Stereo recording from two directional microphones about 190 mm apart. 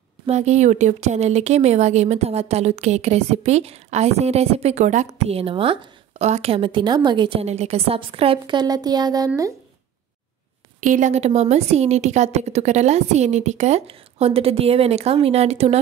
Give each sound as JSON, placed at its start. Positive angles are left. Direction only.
{"t": 0.3, "sound": "speech", "side_deg": -35}
{"t": 10.8, "sound": "speech", "side_deg": -40}